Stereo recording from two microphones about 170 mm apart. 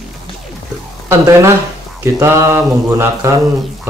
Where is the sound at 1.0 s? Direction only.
15° right (ahead or behind).